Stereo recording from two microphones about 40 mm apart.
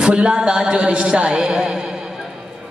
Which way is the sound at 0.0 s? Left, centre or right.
Right.